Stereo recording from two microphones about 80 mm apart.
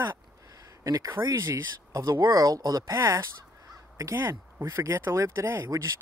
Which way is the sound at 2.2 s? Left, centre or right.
Right.